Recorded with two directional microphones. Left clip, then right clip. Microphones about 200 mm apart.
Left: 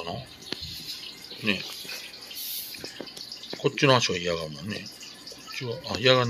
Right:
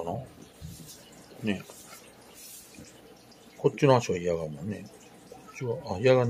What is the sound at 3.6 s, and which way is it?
Speech, 10° right (ahead or behind).